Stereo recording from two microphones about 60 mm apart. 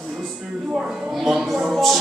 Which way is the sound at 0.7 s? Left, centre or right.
Centre.